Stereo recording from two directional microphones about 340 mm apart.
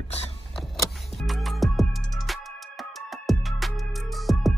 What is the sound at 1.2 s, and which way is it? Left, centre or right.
Music, centre.